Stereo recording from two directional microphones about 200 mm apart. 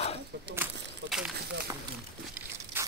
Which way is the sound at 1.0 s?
65° right (ahead or behind).